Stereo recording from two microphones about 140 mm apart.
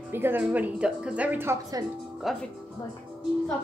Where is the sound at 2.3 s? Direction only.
Centre (ahead or behind).